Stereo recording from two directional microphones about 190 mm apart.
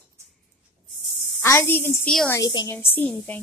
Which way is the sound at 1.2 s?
10° left (ahead or behind).